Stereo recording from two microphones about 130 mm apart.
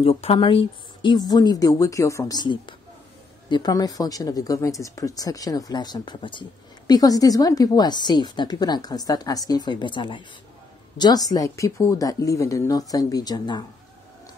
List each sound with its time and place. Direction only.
0.0 s speech: 50° left (ahead or behind); by 13.7 s 35° left (ahead or behind)